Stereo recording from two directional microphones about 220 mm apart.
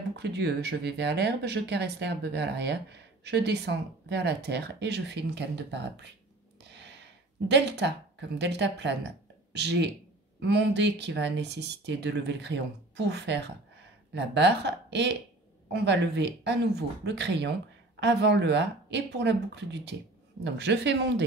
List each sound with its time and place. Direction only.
0.1 s speech: 50° right (ahead or behind)
6.6 s a sound: 50° right (ahead or behind)
7.4 s speech: 50° right (ahead or behind)